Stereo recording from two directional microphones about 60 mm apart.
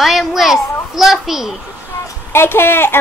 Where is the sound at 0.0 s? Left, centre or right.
Centre.